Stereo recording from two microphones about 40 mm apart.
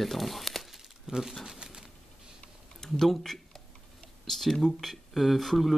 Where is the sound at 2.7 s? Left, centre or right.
Centre.